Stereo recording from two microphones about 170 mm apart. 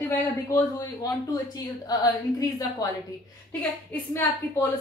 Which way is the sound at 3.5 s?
10° left (ahead or behind).